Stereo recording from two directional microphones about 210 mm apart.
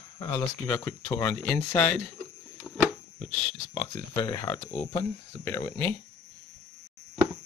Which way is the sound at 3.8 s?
15° left (ahead or behind).